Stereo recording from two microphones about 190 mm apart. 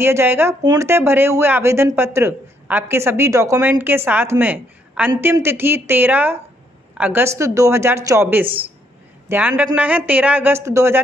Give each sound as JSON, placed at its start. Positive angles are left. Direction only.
{"t": 0.0, "sound": "speech", "side_deg": -10}